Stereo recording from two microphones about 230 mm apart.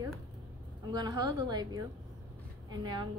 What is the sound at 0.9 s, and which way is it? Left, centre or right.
A woman's voice, centre.